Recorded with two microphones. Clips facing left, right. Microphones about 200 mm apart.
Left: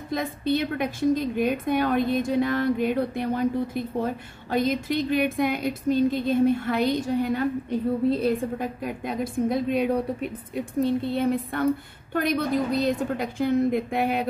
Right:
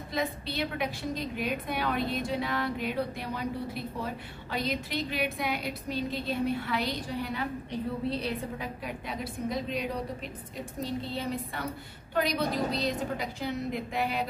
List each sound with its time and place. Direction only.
0.1 s a woman's voice: 50° left (ahead or behind)